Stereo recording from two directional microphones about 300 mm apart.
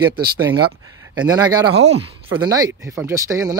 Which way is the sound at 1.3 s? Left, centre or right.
Centre.